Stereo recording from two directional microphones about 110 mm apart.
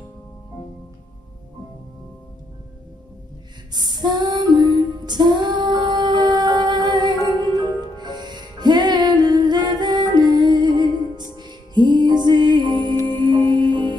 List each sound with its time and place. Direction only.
3.7 s music: 40° right (ahead or behind)